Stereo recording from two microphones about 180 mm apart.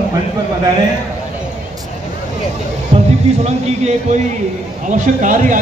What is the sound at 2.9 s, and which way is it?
Speech, 40° right (ahead or behind).